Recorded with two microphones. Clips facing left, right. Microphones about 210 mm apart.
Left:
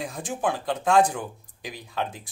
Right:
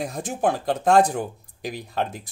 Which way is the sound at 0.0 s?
40° right (ahead or behind).